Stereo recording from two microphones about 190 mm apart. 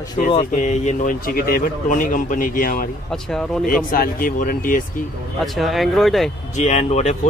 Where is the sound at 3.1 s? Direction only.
Centre (ahead or behind).